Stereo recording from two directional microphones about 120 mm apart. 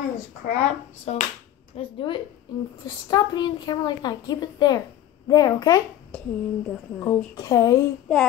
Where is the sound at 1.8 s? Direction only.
45° left (ahead or behind).